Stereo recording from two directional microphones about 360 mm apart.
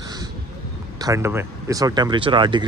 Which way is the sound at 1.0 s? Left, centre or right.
Centre.